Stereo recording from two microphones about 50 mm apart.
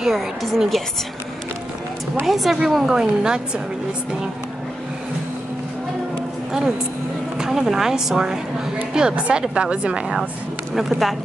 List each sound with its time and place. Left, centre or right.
0.0 s a woman's voice: centre
2.2 s a woman's voice: centre
7.3 s a woman's voice: centre
10.7 s a woman's voice: centre